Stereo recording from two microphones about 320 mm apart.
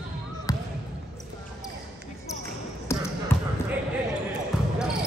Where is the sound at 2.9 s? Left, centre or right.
Centre.